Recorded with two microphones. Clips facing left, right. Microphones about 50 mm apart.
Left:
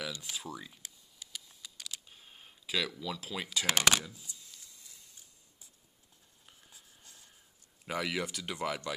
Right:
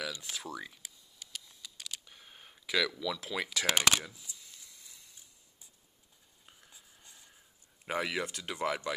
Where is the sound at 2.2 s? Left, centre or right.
Right.